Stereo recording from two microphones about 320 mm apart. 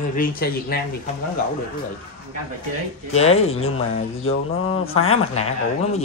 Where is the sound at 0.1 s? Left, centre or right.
Left.